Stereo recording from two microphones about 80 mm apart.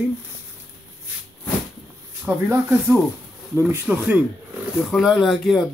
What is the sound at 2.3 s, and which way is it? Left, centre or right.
Speech, centre.